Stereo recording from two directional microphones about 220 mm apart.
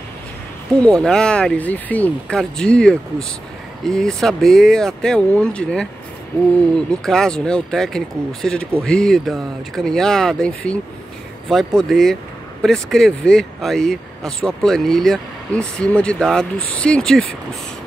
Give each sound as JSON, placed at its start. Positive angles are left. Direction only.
{"t": 1.0, "sound": "speech", "side_deg": 5}
{"t": 6.9, "sound": "speech", "side_deg": 5}